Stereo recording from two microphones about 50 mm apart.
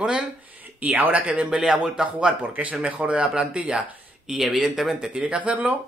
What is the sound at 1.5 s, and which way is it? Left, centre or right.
Speech, centre.